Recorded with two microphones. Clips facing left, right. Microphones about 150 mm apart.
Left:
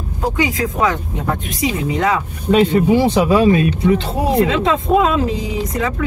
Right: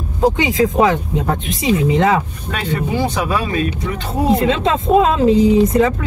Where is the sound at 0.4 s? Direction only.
25° right (ahead or behind).